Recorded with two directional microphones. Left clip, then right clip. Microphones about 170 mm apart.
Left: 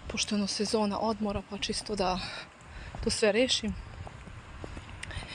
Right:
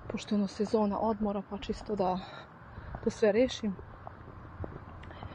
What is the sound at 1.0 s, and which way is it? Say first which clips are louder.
Speech: even; 25° left (ahead or behind).